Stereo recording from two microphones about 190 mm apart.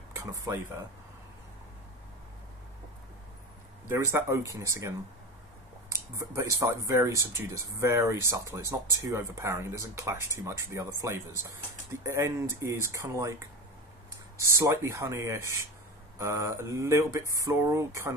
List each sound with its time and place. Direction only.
0.1 s speech: 15° right (ahead or behind)
3.9 s speech: 15° right (ahead or behind)
14.6 s speech: 15° right (ahead or behind)